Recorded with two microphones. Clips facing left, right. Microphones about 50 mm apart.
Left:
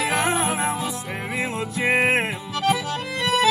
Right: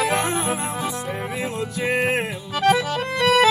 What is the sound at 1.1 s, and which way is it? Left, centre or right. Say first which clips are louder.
Music: even; left.